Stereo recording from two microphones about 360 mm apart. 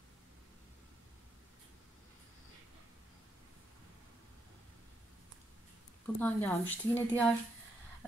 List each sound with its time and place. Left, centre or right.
6.1 s speech: centre